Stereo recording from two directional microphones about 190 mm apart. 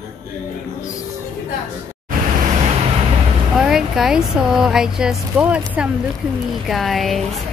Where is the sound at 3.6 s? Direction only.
5° right (ahead or behind).